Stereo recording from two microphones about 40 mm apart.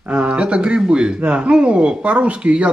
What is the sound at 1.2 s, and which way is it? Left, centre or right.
Speech, right.